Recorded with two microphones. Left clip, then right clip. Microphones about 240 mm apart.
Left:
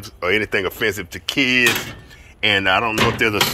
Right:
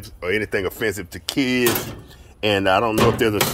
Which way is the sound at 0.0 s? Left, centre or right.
Centre.